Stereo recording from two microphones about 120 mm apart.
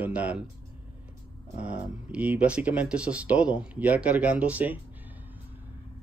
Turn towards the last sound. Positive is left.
turn(degrees=-15)  # may be behind; listen again after turning